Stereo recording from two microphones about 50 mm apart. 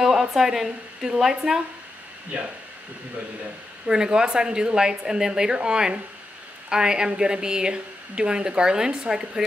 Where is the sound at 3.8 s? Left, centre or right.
Centre.